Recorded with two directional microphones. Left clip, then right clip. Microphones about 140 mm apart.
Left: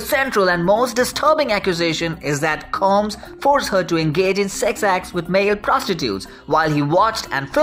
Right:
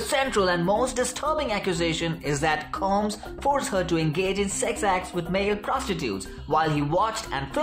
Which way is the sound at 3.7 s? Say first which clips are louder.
Left 7 dB; 25° left (ahead or behind).